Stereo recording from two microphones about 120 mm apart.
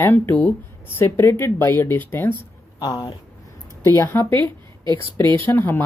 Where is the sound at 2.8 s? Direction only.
35° left (ahead or behind).